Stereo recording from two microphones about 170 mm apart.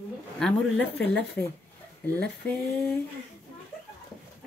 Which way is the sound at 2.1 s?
5° left (ahead or behind).